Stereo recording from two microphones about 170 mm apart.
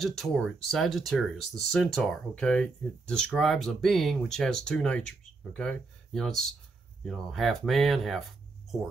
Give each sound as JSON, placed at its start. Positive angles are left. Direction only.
{"t": 0.0, "sound": "speech", "side_deg": 0}